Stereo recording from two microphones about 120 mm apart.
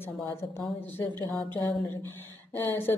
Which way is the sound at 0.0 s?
20° left (ahead or behind).